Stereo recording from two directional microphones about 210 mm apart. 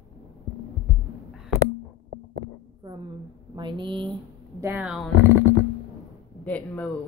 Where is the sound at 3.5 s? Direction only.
20° right (ahead or behind).